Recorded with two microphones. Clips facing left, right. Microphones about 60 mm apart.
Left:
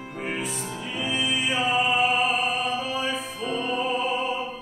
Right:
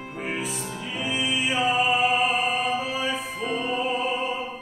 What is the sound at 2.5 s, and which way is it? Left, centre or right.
Mantra, centre.